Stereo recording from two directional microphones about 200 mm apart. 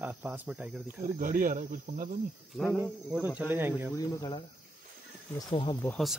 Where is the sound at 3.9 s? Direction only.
15° left (ahead or behind).